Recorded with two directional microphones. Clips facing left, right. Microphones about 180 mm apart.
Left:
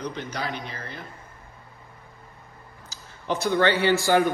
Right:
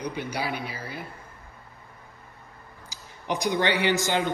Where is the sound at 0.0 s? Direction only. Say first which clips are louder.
Right 1 dB; 10° right (ahead or behind).